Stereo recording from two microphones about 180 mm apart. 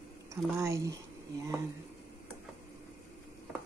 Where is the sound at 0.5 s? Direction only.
15° right (ahead or behind).